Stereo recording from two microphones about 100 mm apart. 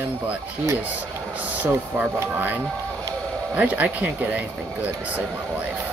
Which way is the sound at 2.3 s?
15° right (ahead or behind).